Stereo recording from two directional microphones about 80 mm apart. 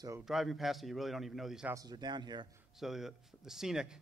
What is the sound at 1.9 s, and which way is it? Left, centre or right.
Speech, right.